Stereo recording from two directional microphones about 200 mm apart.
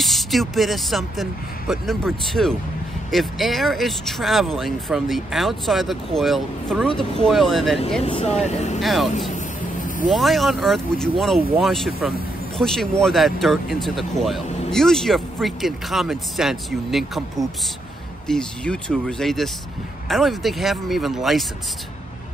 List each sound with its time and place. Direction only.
0.0 s speech: centre (ahead or behind)
8.0 s speech: 30° left (ahead or behind)
8.8 s speech: centre (ahead or behind)
10.1 s speech: centre (ahead or behind)